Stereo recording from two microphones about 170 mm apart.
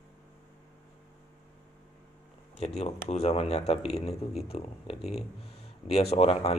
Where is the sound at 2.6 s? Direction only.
40° left (ahead or behind).